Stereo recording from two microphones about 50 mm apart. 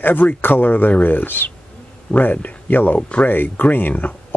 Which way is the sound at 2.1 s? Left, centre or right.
Left.